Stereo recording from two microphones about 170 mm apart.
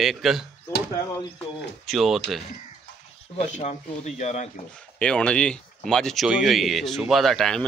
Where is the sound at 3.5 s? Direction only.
40° left (ahead or behind).